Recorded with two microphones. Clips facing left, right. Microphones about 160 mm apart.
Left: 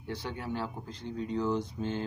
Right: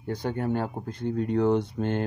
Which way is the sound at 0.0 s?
45° right (ahead or behind).